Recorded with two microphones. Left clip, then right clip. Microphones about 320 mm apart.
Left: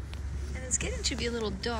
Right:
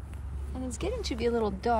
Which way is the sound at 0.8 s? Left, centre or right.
Centre.